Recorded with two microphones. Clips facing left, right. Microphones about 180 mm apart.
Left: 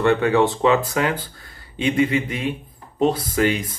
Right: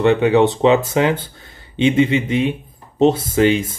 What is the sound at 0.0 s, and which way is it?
Speech, 20° right (ahead or behind).